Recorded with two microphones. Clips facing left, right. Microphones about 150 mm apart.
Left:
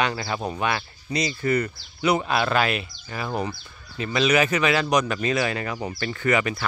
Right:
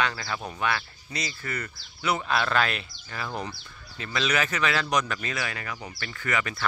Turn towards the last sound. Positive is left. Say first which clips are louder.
# left 7 dB
turn(degrees=20)  # may be behind; listen again after turning